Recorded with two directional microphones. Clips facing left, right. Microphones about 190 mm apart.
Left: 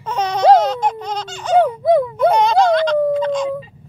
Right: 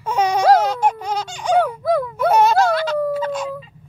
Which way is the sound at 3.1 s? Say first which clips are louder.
Left 5 dB; 5° right (ahead or behind).